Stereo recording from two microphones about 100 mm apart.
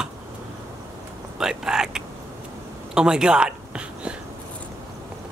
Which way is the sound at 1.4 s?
5° right (ahead or behind).